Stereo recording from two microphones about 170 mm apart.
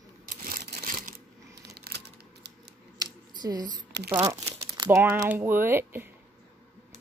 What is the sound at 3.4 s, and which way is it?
Speech, 25° right (ahead or behind).